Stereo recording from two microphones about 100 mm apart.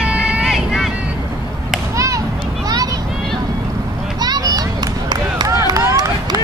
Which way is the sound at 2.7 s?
40° right (ahead or behind).